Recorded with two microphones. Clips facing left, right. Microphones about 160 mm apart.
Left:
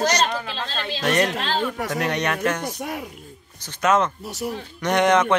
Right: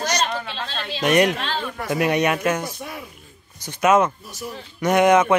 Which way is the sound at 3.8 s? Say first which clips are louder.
Right 3 dB; 10° right (ahead or behind).